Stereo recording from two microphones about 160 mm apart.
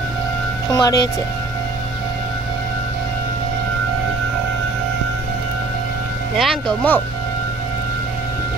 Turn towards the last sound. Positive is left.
turn(degrees=5)  # may be behind; listen again after turning